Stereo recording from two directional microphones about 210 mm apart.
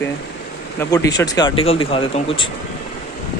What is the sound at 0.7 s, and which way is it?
Speech, 15° left (ahead or behind).